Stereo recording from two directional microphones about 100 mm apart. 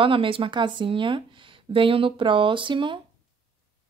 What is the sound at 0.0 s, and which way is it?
Speech, 60° right (ahead or behind).